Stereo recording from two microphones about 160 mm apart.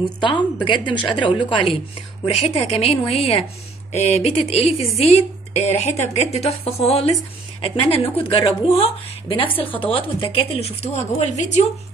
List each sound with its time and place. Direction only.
0.0 s a woman's voice: 30° left (ahead or behind); by 11.6 s 45° left (ahead or behind)